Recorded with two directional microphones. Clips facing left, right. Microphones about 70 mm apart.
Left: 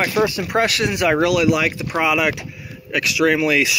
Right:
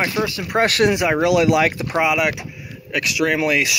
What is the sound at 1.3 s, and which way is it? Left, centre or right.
Speech, right.